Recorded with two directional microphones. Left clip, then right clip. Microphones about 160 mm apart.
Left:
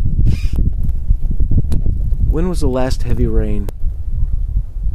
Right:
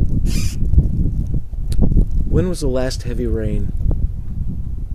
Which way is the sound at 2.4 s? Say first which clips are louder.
Left 1 dB; 35° left (ahead or behind).